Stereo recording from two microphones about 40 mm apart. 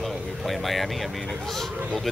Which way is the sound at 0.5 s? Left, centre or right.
Centre.